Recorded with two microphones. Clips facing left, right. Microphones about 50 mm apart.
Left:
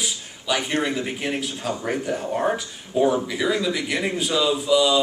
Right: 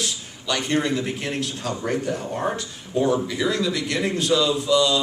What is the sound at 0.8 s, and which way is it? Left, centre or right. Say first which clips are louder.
Speech: even; centre.